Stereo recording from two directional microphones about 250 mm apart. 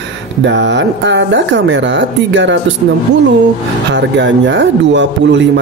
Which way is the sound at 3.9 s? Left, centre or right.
Right.